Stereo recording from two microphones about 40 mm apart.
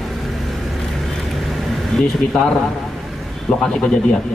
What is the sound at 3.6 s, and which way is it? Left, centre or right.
Speech, left.